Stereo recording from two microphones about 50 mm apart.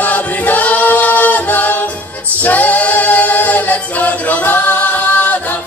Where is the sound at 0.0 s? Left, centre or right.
Left.